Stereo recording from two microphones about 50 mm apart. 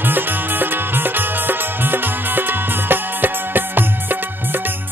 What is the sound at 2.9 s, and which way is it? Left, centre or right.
Music, right.